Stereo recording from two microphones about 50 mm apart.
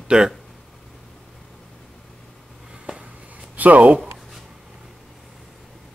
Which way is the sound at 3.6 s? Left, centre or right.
Right.